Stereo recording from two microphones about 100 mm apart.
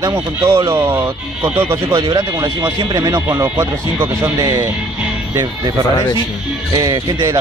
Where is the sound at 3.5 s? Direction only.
20° right (ahead or behind).